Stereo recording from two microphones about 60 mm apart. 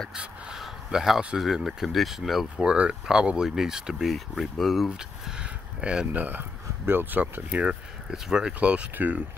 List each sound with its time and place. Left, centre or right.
0.1 s a sound: centre
1.3 s speech: centre
2.5 s speech: centre
4.1 s speech: centre
4.8 s speech: centre
8.9 s speech: right